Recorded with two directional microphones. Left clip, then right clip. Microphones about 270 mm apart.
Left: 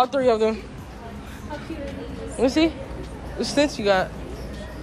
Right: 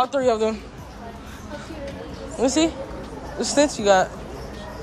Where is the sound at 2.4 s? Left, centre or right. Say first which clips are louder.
Even; centre.